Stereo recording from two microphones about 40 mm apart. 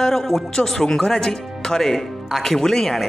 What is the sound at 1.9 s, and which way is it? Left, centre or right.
A man's voice, centre.